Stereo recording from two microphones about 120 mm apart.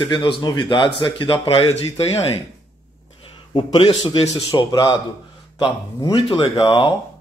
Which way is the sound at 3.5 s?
45° left (ahead or behind).